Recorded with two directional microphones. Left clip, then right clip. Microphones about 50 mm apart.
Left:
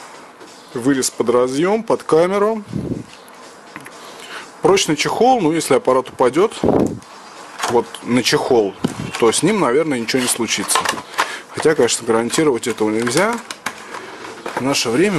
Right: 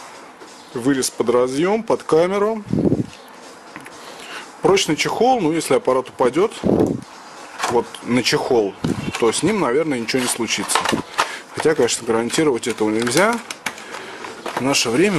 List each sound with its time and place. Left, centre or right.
0.7 s speech: centre
4.3 s speech: centre
7.6 s speech: centre
14.6 s speech: centre